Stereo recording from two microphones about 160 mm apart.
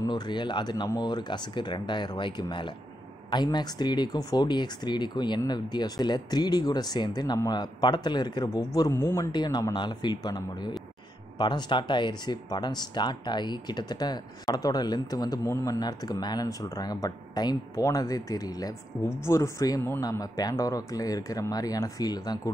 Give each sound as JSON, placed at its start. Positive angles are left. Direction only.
{"t": 0.0, "sound": "speech", "side_deg": 30}